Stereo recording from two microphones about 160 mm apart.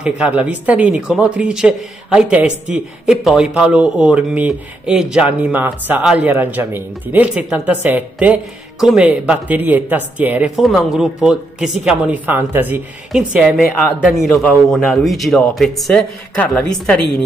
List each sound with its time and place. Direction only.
0.0 s a woman's voice: 10° right (ahead or behind)
14.3 s a woman's voice: 10° left (ahead or behind)
14.7 s a woman's voice: centre (ahead or behind)